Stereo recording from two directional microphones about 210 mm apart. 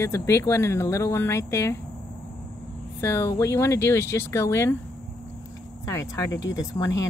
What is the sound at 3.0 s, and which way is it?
Speech, 10° left (ahead or behind).